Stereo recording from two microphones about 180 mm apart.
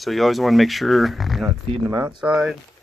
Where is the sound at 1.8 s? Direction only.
10° right (ahead or behind).